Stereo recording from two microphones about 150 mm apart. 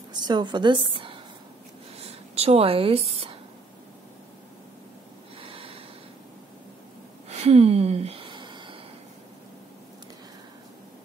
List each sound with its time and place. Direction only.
0.1 s a woman's voice: 30° right (ahead or behind)
5.4 s snort: 35° right (ahead or behind)
7.2 s gasp: 45° right (ahead or behind)